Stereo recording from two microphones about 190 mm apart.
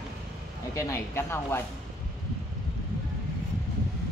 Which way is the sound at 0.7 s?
15° left (ahead or behind).